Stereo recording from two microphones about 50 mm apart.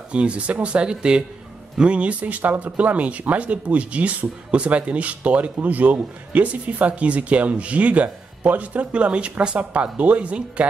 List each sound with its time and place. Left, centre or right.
0.1 s speech: right